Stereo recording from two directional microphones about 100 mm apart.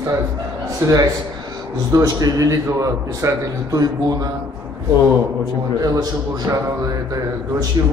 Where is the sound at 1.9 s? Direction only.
35° right (ahead or behind).